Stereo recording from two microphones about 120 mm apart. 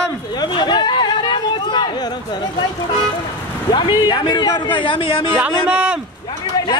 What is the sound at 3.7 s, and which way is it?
A man's voice, 40° left (ahead or behind).